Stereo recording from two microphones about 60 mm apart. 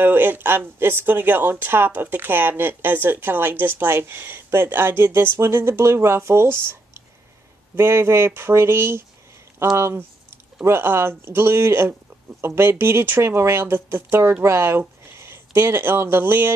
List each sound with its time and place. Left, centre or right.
0.0 s speech: right
7.7 s a sound: right
10.6 s speech: right